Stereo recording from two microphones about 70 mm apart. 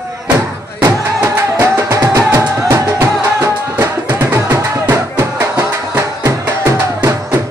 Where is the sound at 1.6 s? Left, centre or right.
Right.